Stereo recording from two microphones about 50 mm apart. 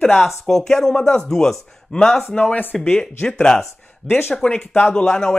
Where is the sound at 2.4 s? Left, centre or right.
Left.